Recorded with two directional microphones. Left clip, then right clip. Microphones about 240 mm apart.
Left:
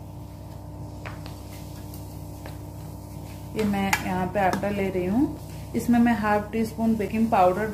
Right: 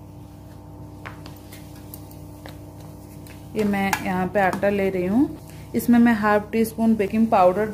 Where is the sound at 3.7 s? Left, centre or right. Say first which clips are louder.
Right 1 dB; right.